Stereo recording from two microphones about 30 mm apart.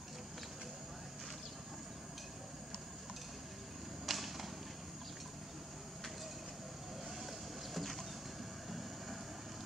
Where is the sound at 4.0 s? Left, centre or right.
Centre.